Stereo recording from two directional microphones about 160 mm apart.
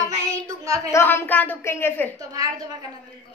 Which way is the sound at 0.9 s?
15° left (ahead or behind).